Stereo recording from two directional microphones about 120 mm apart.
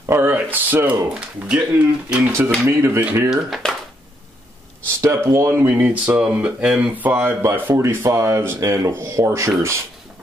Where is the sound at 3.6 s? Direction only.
5° left (ahead or behind).